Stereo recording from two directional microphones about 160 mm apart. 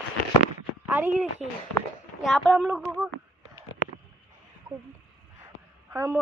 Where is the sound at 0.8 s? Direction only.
10° right (ahead or behind).